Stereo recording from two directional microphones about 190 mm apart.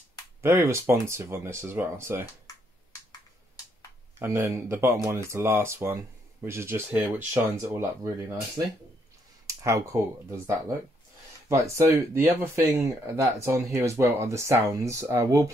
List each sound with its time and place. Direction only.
0.4 s speech: 15° right (ahead or behind)
2.4 s computer keyboard: 20° left (ahead or behind)
4.2 s speech: 15° right (ahead or behind)
9.5 s speech: 15° right (ahead or behind)